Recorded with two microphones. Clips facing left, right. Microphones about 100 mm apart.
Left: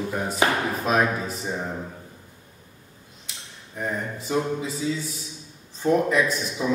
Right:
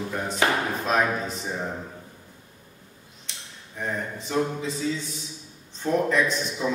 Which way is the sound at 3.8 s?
5° left (ahead or behind).